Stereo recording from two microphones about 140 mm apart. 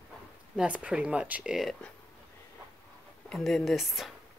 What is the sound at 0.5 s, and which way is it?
Speech, 10° right (ahead or behind).